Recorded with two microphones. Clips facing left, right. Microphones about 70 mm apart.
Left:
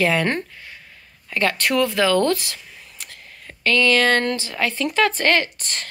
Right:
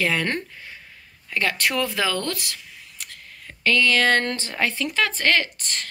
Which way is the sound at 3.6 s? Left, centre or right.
Centre.